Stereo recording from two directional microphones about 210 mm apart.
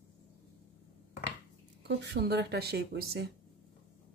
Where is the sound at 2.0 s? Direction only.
55° right (ahead or behind).